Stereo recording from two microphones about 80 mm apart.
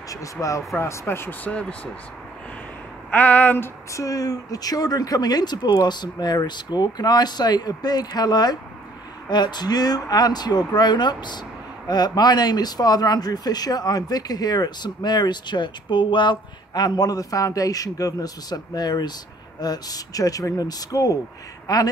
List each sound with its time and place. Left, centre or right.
0.1 s speech: left
0.7 s speech: left
1.5 s speech: centre
3.1 s a sound: centre
3.9 s speech: left